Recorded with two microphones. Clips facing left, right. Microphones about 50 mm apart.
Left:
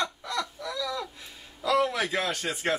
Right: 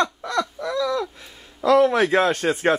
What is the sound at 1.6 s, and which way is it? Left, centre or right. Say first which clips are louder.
A man's voice: right 9 dB; right.